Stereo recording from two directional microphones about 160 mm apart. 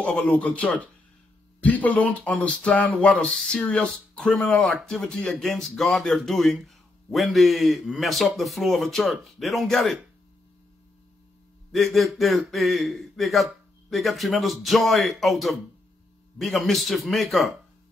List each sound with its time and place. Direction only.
0.0 s a man's voice: 5° left (ahead or behind)
11.7 s a man's voice: centre (ahead or behind)